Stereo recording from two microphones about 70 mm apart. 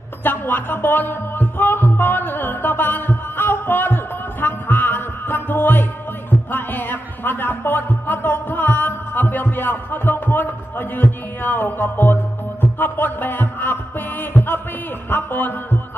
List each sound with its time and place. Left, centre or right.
0.2 s music: left
15.0 s speech: left